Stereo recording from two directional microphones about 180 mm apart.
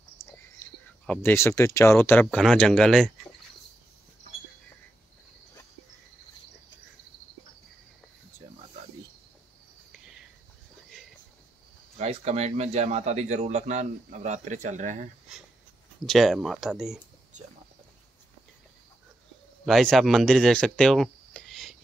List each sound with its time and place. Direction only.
0.2 s a sound: 15° left (ahead or behind)
1.0 s speech: 10° left (ahead or behind)
9.9 s cricket: 5° right (ahead or behind)
12.0 s a man's voice: 35° right (ahead or behind)
16.1 s speech: centre (ahead or behind)
19.6 s speech: centre (ahead or behind)